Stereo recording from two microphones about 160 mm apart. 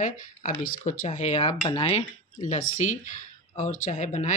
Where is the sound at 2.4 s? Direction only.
50° left (ahead or behind).